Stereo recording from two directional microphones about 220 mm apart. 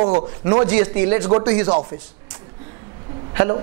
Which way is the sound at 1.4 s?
15° right (ahead or behind).